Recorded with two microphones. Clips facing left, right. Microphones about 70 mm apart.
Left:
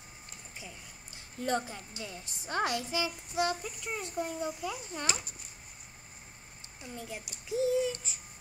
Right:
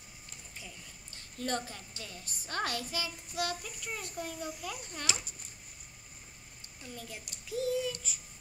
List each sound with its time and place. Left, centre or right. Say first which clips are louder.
1.4 s a woman's voice: left 3 dB; centre
4.6 s speech: left 4 dB; centre
6.8 s a woman's voice: left 3 dB; centre